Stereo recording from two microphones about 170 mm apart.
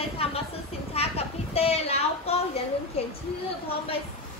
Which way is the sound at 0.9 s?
35° left (ahead or behind).